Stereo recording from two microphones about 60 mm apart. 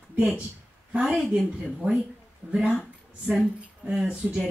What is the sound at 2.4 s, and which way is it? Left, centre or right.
Speech, right.